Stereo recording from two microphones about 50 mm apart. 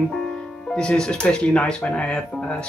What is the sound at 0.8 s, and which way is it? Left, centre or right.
Speech, centre.